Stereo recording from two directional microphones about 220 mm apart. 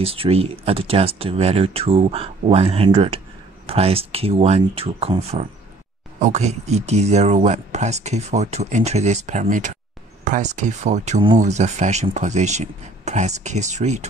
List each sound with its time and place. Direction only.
0.0 s speech: 25° right (ahead or behind)